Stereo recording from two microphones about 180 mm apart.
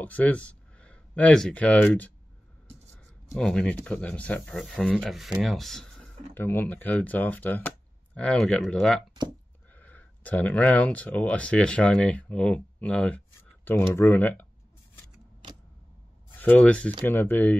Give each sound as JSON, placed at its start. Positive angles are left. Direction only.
{"t": 0.0, "sound": "speech", "side_deg": 10}
{"t": 3.3, "sound": "speech", "side_deg": 5}
{"t": 16.3, "sound": "speech", "side_deg": 10}